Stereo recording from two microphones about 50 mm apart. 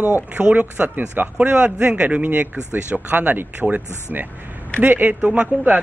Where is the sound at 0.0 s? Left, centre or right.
Right.